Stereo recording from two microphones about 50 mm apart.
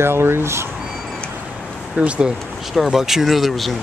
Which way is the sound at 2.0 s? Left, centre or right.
Right.